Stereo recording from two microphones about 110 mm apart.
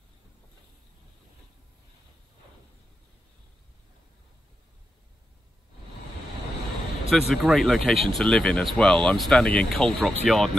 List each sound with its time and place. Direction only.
7.1 s speech: centre (ahead or behind)